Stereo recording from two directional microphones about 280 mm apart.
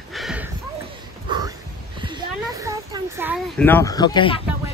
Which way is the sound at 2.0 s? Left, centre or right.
Centre.